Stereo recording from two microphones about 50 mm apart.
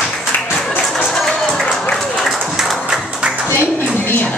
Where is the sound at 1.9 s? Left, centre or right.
Centre.